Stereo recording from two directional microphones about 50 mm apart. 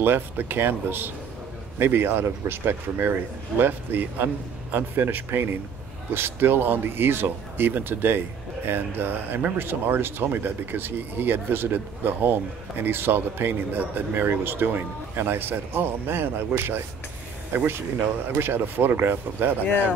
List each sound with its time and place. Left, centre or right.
0.0 s speech: right